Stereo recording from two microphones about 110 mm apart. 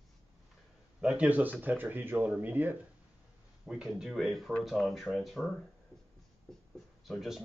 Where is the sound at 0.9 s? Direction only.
10° right (ahead or behind).